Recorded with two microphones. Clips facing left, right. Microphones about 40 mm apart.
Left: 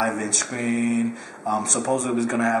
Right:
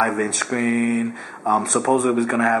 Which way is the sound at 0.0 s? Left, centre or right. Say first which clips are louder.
Right 4 dB; centre.